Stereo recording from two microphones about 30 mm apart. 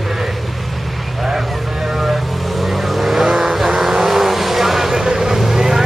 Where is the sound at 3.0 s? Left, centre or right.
Centre.